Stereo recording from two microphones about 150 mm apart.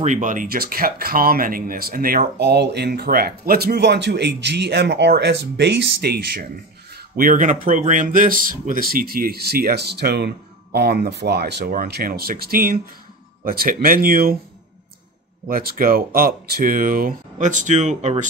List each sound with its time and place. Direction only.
0.0 s speech: 60° right (ahead or behind); by 6.4 s 90° right
7.2 s speech: 65° right (ahead or behind); by 12.8 s 80° right
13.4 s speech: 70° right (ahead or behind)
15.4 s speech: 70° right (ahead or behind); by 18.1 s 55° right (ahead or behind)